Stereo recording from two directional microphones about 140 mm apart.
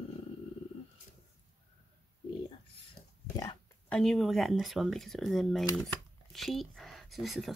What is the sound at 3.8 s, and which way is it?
Speech, 5° left (ahead or behind).